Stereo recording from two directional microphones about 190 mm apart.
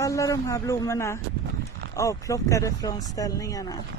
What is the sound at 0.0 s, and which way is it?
Speech, 15° left (ahead or behind).